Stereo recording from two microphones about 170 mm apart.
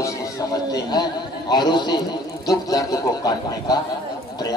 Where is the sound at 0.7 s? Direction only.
25° left (ahead or behind).